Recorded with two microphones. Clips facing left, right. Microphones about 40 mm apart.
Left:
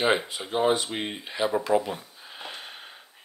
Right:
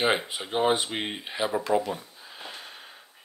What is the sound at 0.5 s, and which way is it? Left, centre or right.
Speech, right.